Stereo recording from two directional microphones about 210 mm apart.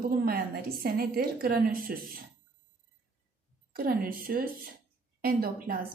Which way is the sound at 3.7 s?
45° right (ahead or behind).